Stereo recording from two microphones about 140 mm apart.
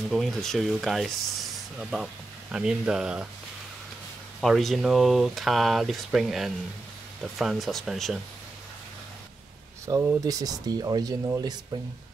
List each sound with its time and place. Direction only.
0.1 s speech: centre (ahead or behind)
4.4 s speech: centre (ahead or behind)
9.8 s speech: 20° right (ahead or behind)